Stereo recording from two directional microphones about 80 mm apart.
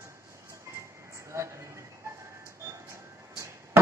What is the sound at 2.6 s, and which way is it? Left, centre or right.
Music, right.